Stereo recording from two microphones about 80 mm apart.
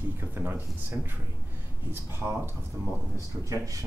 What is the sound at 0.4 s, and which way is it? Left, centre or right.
Speech, right.